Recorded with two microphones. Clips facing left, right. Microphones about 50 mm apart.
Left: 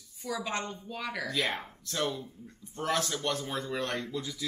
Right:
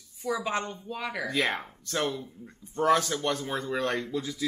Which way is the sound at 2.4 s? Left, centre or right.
Right.